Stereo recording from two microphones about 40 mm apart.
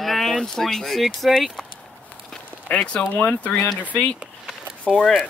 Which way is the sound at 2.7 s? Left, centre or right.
Left.